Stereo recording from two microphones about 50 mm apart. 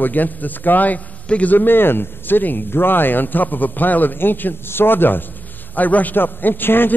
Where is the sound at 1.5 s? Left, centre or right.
Left.